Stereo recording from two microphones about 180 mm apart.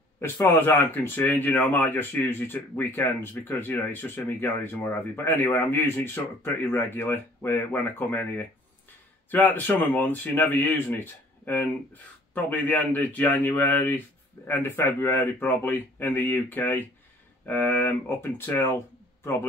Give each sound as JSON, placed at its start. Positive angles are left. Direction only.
{"t": 0.2, "sound": "speech", "side_deg": 15}